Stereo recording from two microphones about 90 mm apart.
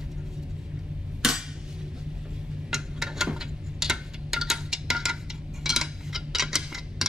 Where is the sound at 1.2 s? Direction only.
5° right (ahead or behind).